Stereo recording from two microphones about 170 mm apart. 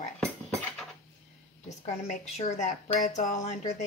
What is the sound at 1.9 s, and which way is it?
Speech, 45° left (ahead or behind).